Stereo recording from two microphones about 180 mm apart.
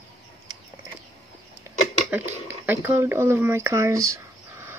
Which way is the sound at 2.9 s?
15° right (ahead or behind).